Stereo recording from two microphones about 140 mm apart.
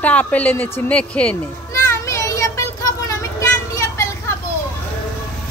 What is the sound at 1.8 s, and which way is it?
Vehicle, 20° left (ahead or behind).